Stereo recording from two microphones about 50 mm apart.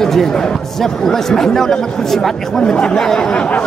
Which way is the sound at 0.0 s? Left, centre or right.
Centre.